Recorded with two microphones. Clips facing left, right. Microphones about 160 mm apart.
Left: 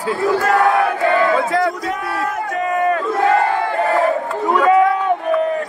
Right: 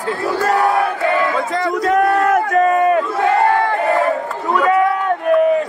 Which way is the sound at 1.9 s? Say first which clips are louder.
Right 9 dB; 65° right (ahead or behind).